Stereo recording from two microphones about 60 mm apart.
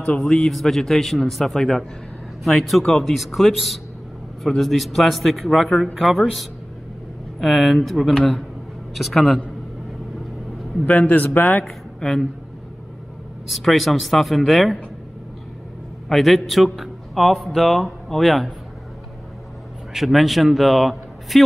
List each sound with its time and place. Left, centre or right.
0.2 s speech: centre
0.5 s a man's voice: centre
10.9 s speech: left
11.6 s speech: centre
13.5 s a man's voice: centre
16.1 s a man's voice: centre
19.9 s a man's voice: centre